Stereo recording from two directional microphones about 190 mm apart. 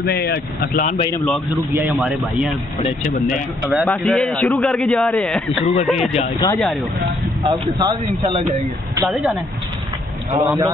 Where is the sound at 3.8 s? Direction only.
5° left (ahead or behind).